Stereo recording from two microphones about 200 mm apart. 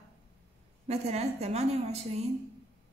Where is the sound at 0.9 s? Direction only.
30° right (ahead or behind).